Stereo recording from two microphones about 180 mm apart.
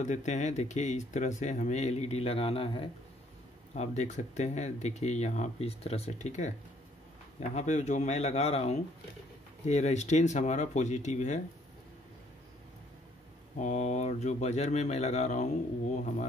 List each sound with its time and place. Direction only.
0.0 s speech: 40° left (ahead or behind)
7.5 s speech: 40° left (ahead or behind)
13.6 s speech: 40° left (ahead or behind)